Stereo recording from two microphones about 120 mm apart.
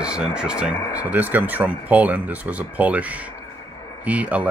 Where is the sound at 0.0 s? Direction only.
5° right (ahead or behind).